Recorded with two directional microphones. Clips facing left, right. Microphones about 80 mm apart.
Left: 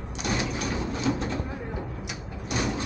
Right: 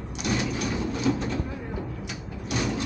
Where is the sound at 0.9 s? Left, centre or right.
Left.